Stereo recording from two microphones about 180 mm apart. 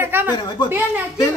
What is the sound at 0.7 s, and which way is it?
Speech, 10° right (ahead or behind).